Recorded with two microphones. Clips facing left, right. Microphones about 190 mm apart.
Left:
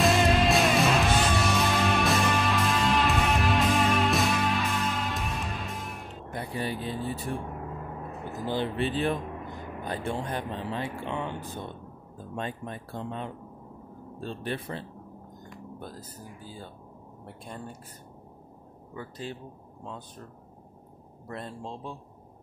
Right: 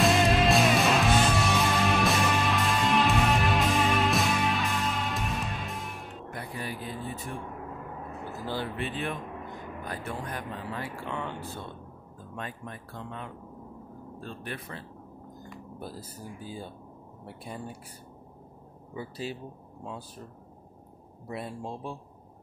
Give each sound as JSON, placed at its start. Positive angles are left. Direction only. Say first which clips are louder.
{"t": 0.0, "sound": "music", "louder": "even", "side_deg": 0}
{"t": 6.3, "sound": "vehicle", "louder": "left 6 dB", "side_deg": 30}
{"t": 8.3, "sound": "a sound", "louder": "left 4 dB", "side_deg": 20}
{"t": 9.8, "sound": "speech", "louder": "left 5 dB", "side_deg": 30}
{"t": 15.5, "sound": "speech", "louder": "even", "side_deg": -10}
{"t": 18.9, "sound": "speech", "louder": "right 2 dB", "side_deg": -10}
{"t": 21.3, "sound": "speech", "louder": "right 2 dB", "side_deg": -10}